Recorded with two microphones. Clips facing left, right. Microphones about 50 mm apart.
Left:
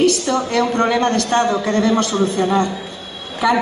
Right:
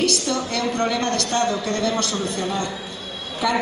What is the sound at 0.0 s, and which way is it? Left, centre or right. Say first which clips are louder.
A man's voice: left 6 dB; left.